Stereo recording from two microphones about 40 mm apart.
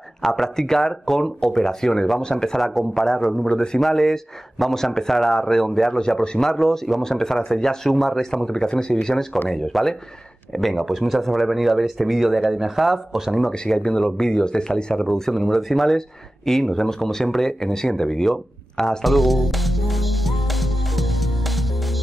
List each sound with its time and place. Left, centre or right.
0.2 s a man's voice: centre
2.6 s a man's voice: centre
3.4 s a man's voice: centre
13.7 s a man's voice: centre
19.0 s music: centre